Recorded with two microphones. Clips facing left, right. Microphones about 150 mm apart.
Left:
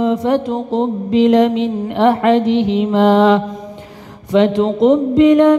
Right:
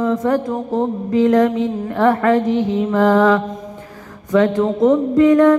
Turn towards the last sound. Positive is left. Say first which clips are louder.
# left 2 dB
turn(degrees=20)  # may be behind; listen again after turning